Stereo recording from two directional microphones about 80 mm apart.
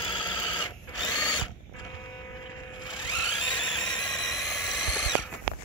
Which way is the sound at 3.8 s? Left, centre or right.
Left.